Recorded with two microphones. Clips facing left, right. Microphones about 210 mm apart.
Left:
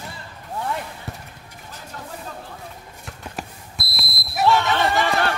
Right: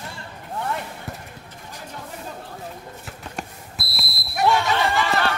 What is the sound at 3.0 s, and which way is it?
Basketball bounce, centre (ahead or behind).